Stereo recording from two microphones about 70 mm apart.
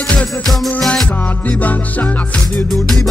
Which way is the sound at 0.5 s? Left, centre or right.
Centre.